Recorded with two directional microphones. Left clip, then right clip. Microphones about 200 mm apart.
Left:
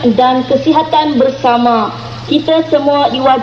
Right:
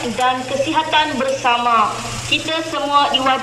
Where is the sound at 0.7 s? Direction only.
45° left (ahead or behind).